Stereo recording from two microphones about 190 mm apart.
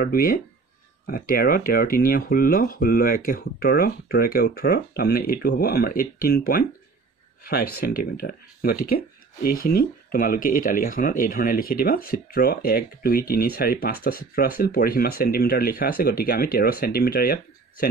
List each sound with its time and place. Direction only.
0.0 s speech: 50° left (ahead or behind)